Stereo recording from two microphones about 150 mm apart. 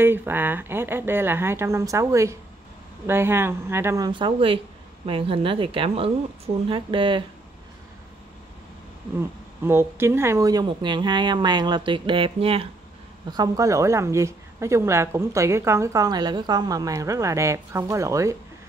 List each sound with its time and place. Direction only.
0.0 s speech: 15° right (ahead or behind)
4.1 s a woman's voice: 35° right (ahead or behind)
9.6 s a woman's voice: 15° right (ahead or behind); by 12.6 s 40° right (ahead or behind)
13.3 s a woman's voice: 25° right (ahead or behind)